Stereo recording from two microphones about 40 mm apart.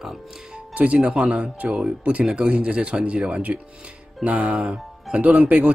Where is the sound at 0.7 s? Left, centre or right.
Right.